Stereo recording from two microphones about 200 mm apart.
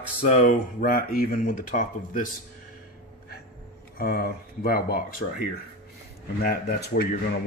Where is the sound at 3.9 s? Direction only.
50° left (ahead or behind).